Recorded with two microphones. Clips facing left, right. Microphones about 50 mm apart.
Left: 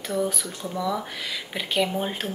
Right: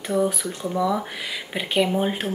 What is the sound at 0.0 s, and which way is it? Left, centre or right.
Speech, centre.